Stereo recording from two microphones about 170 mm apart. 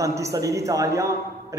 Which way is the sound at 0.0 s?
20° right (ahead or behind).